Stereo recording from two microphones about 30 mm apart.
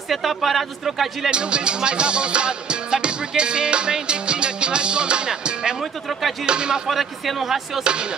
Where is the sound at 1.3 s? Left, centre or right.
Right.